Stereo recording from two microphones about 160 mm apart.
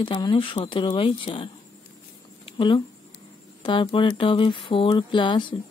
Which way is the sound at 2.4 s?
35° left (ahead or behind).